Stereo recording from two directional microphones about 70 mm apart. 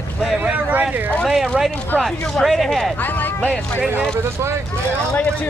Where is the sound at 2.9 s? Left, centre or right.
Left.